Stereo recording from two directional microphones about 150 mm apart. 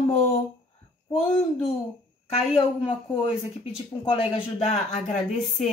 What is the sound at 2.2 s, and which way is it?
A woman's voice, 40° left (ahead or behind).